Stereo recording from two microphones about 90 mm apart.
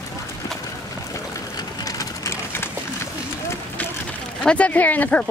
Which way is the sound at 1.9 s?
40° left (ahead or behind).